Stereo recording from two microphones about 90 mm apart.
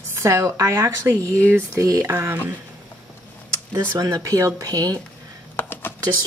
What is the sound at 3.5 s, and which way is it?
Speech, 40° right (ahead or behind).